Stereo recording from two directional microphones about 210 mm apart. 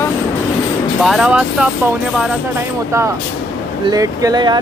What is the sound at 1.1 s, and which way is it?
Speech, 5° right (ahead or behind).